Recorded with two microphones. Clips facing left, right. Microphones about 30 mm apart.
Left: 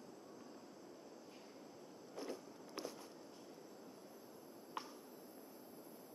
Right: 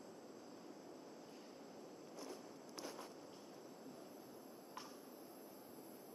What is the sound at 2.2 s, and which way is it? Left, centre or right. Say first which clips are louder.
Walk: left 6 dB; left.